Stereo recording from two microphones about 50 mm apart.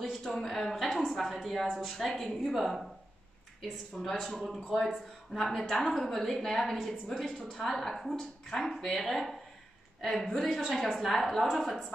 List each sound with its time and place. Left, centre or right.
0.0 s speech: centre